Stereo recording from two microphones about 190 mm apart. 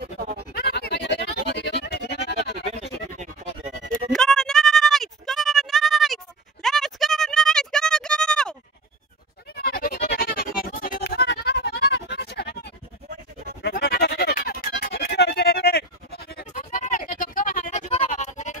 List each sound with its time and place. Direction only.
0.6 s music: 55° left (ahead or behind)
2.6 s music: 35° right (ahead or behind)
4.1 s bleat: centre (ahead or behind)
9.6 s music: 50° left (ahead or behind)
16.5 s music: 40° left (ahead or behind)